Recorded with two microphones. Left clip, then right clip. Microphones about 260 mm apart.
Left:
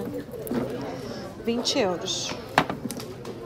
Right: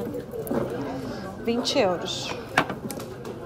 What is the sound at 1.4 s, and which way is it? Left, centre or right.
Speech, centre.